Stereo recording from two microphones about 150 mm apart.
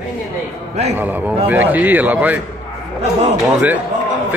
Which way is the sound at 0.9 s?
10° right (ahead or behind).